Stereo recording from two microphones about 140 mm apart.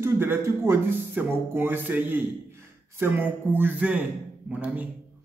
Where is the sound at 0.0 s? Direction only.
15° right (ahead or behind).